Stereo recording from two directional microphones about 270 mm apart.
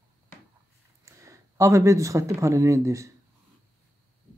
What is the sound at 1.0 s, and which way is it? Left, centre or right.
Speech, centre.